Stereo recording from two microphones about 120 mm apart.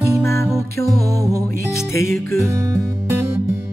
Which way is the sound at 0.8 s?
30° right (ahead or behind).